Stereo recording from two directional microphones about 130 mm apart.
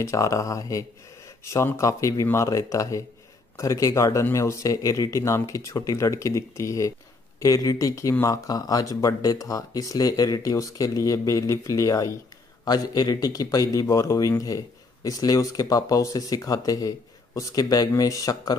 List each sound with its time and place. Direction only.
0.0 s speech: 25° left (ahead or behind)